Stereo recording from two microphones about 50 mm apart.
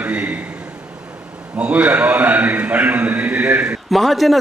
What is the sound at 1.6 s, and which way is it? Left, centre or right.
A man's voice, right.